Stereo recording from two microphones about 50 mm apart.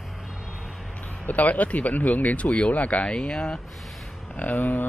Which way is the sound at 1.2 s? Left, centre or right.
Left.